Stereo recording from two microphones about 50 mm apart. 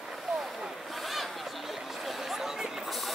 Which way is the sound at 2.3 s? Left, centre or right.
Centre.